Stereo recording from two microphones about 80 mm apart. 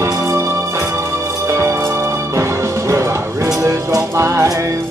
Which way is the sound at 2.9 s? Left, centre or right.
Right.